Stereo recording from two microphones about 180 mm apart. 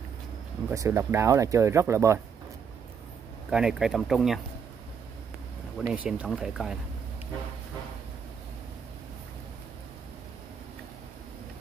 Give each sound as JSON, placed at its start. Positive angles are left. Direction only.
{"t": 0.7, "sound": "speech", "side_deg": -15}
{"t": 3.4, "sound": "speech", "side_deg": -5}
{"t": 5.8, "sound": "speech", "side_deg": -5}